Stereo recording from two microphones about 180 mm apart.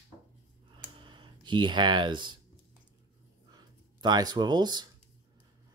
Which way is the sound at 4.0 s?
25° right (ahead or behind).